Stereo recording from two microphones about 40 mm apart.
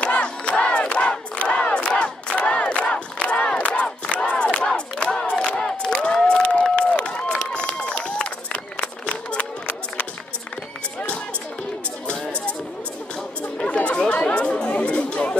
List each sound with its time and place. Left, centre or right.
0.2 s crowd: left
4.1 s battle cry: left
5.0 s crowd: left
5.6 s a sound: centre
6.2 s a sound: left
7.1 s run: left
12.1 s music: left
13.4 s chatter: left